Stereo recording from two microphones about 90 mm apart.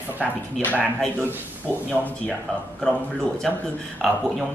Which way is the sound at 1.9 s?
20° left (ahead or behind).